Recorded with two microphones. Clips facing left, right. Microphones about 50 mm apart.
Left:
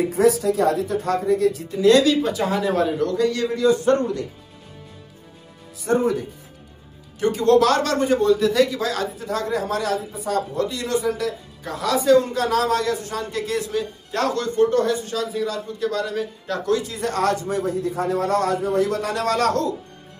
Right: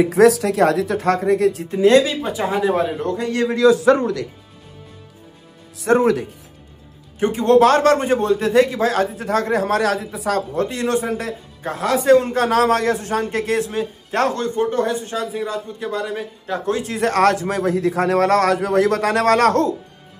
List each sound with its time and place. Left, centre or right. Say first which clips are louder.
0.0 s speech: right 5 dB; right
3.5 s a man's voice: right 6 dB; right
5.8 s a man's voice: right 5 dB; right
7.2 s speech: right 3 dB; right
10.5 s speech: right 3 dB; right
16.7 s a man's voice: right 5 dB; right